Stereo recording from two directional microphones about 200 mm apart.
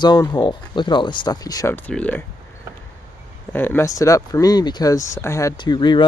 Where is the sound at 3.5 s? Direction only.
10° left (ahead or behind).